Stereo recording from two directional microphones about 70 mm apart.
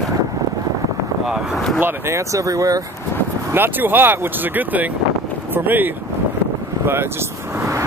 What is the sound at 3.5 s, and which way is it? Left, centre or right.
Speech, right.